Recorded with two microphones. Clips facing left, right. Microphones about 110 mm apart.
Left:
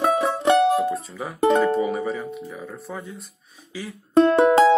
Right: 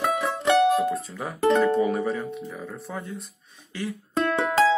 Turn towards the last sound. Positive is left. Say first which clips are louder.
# left 7 dB
turn(degrees=30)  # may be behind; listen again after turning